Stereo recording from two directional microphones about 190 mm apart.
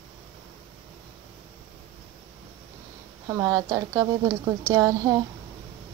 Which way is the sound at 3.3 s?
20° right (ahead or behind).